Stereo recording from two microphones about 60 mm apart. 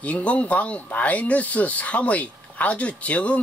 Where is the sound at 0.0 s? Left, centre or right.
Left.